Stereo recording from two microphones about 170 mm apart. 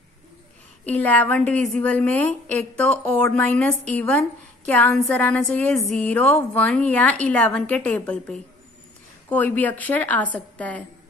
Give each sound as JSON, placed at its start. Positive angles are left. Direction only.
{"t": 0.8, "sound": "a woman's voice", "side_deg": 10}